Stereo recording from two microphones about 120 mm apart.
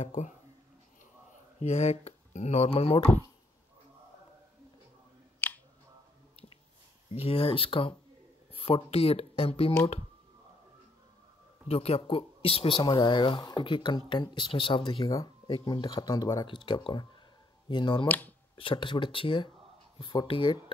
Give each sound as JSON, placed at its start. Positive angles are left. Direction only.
{"t": 0.0, "sound": "speech", "side_deg": 85}
{"t": 1.6, "sound": "speech", "side_deg": 65}
{"t": 5.4, "sound": "clicking", "side_deg": 15}
{"t": 7.1, "sound": "speech", "side_deg": 55}
{"t": 11.6, "sound": "speech", "side_deg": 55}
{"t": 15.0, "sound": "speech", "side_deg": 30}
{"t": 15.4, "sound": "speech", "side_deg": 45}
{"t": 16.4, "sound": "speech", "side_deg": 45}
{"t": 18.0, "sound": "speech", "side_deg": 15}
{"t": 18.6, "sound": "speech", "side_deg": 45}